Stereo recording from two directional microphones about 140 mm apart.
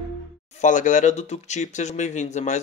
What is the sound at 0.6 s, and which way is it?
Speech, 60° left (ahead or behind).